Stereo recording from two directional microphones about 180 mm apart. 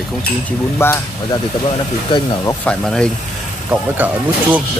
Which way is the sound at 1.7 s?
25° left (ahead or behind).